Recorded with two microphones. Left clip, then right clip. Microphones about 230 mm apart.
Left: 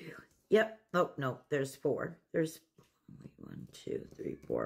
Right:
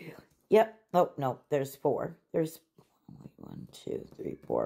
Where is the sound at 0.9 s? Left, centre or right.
Centre.